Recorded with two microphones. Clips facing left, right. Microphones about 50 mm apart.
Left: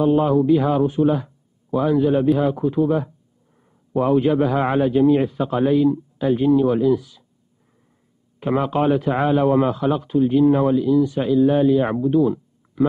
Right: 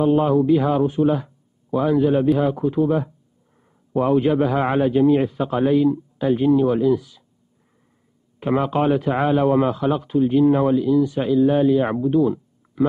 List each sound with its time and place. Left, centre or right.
0.0 s a man's voice: centre
8.5 s a man's voice: centre